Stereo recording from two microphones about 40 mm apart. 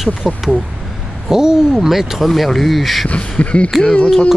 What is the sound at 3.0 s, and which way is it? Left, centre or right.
Speech, left.